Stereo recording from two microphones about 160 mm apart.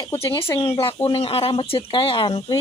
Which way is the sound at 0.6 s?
30° left (ahead or behind).